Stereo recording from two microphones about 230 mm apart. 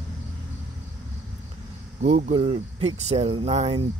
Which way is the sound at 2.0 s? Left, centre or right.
Right.